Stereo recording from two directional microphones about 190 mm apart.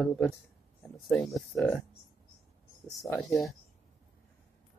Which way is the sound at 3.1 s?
Centre (ahead or behind).